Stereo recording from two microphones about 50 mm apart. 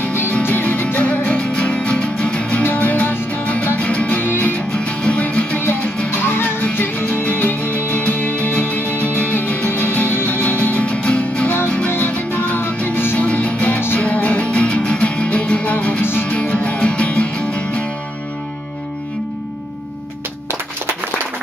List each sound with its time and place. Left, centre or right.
0.1 s music: left; by 2.6 s centre
2.6 s music: left
4.2 s music: left
4.5 s music: left
6.0 s music: left
11.9 s music: left
13.2 s music: left
13.7 s music: left
14.0 s music: left
16.0 s music: left
16.3 s music: left